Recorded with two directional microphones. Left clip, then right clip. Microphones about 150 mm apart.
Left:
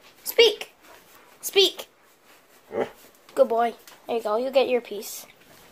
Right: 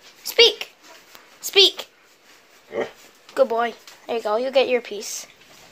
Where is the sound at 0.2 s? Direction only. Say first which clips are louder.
Right 3 dB; 15° left (ahead or behind).